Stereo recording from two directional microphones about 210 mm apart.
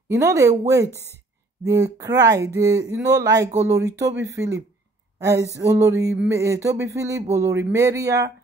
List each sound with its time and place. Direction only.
0.1 s speech: 15° right (ahead or behind)
4.0 s speech: 55° right (ahead or behind)
5.2 s speech: 15° right (ahead or behind)